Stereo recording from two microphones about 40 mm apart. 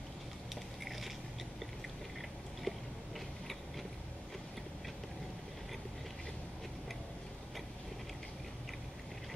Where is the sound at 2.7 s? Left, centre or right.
Centre.